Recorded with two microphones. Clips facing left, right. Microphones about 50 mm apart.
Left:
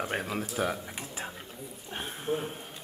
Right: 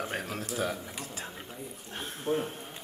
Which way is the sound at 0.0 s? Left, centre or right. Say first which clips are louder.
Left 3 dB; centre.